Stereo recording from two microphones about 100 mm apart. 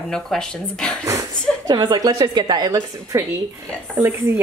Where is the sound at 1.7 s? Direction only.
50° right (ahead or behind).